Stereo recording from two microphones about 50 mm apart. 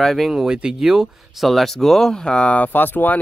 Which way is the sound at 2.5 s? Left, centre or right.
Left.